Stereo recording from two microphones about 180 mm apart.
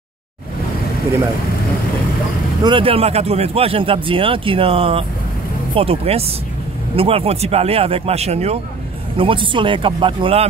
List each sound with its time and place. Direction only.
2.6 s speech: 30° right (ahead or behind)